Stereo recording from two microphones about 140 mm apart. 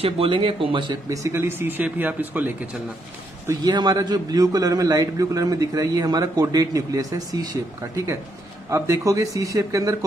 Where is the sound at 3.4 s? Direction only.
30° right (ahead or behind).